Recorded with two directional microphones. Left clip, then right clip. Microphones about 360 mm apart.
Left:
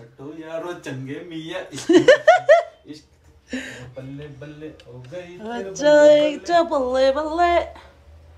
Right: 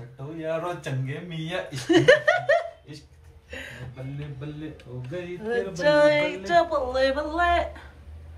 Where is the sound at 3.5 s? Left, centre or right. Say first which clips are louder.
Left 6 dB; left.